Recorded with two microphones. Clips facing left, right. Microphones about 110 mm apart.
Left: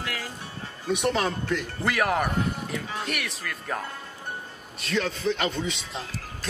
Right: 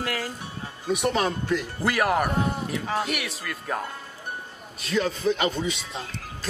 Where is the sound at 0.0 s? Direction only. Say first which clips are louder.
Right 5 dB; 45° right (ahead or behind).